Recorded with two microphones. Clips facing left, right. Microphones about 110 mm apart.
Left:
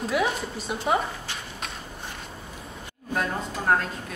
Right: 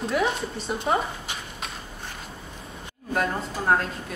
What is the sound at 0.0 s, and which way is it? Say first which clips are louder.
Speech: right 1 dB; 5° left (ahead or behind).